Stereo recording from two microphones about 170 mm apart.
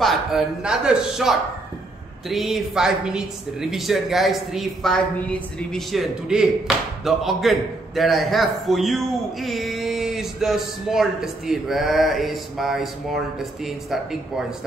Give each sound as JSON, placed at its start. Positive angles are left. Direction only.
{"t": 0.0, "sound": "a man's voice", "side_deg": 0}